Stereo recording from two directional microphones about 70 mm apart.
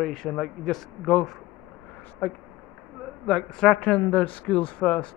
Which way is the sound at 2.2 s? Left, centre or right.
Centre.